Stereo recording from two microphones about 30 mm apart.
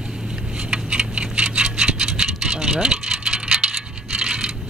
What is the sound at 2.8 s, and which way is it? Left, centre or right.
Coin, right.